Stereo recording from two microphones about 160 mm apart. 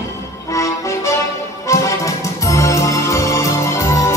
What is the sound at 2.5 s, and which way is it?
Music, 20° left (ahead or behind).